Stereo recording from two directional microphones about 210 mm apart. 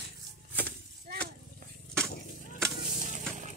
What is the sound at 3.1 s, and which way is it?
Music, 35° right (ahead or behind).